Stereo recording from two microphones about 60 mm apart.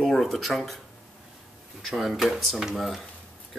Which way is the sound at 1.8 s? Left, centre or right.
Centre.